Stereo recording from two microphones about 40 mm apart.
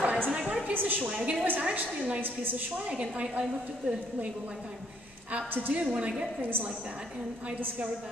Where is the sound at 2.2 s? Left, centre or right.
Right.